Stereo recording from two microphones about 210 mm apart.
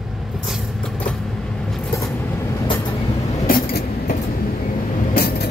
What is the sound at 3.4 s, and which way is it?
Vehicle, 45° left (ahead or behind).